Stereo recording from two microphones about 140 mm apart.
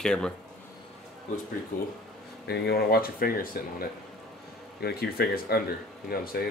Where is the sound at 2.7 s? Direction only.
90° left.